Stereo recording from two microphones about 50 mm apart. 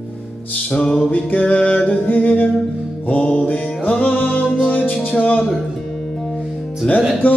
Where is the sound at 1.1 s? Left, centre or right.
Left.